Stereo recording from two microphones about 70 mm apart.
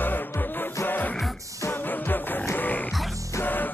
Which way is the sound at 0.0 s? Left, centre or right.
Left.